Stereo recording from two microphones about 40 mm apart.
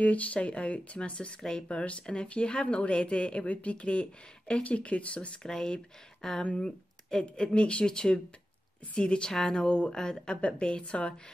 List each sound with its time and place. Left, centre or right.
0.0 s speech: left
5.4 s speech: centre